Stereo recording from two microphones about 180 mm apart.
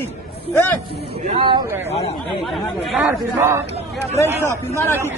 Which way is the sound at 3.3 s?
15° right (ahead or behind).